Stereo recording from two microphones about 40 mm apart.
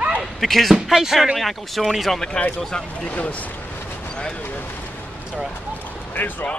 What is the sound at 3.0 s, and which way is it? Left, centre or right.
Speech, left.